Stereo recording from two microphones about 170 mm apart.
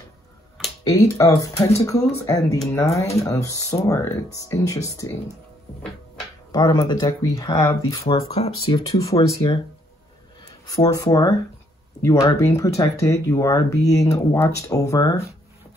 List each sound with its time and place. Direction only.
0.8 s speech: 20° left (ahead or behind)
6.5 s speech: 25° left (ahead or behind)
8.3 s speech: 35° left (ahead or behind)
8.8 s speech: 20° left (ahead or behind)
10.7 s speech: 20° left (ahead or behind)